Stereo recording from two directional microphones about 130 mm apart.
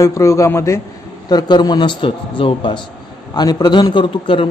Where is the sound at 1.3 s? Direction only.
30° left (ahead or behind).